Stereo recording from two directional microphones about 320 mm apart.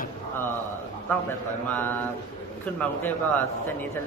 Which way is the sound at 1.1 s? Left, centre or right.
Centre.